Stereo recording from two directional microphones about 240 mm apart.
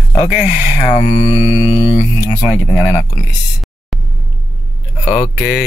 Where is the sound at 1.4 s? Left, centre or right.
Centre.